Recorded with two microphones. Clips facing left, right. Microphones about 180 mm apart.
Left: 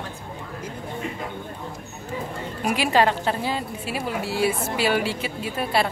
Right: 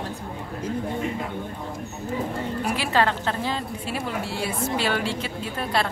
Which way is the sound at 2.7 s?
15° left (ahead or behind).